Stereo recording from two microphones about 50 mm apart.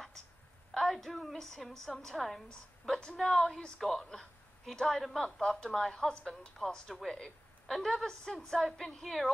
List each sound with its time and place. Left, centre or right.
0.7 s a woman's voice: centre
7.7 s a woman's voice: centre